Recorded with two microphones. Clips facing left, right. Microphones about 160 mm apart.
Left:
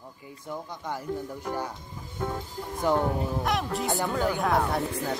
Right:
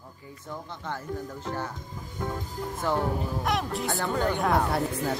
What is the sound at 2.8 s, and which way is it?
Speech, 15° left (ahead or behind).